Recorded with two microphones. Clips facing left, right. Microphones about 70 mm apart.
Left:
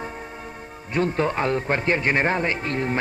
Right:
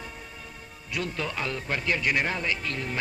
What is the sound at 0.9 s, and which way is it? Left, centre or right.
Speech, left.